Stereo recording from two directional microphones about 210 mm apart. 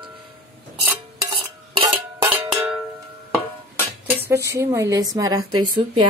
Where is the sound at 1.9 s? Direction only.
10° right (ahead or behind).